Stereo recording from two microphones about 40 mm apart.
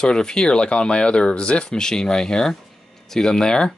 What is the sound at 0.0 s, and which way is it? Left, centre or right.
Speech, centre.